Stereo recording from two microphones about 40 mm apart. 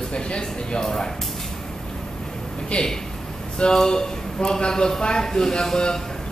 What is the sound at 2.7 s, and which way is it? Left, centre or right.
A man's voice, left.